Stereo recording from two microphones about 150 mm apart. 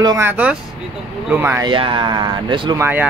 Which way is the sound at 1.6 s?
35° right (ahead or behind).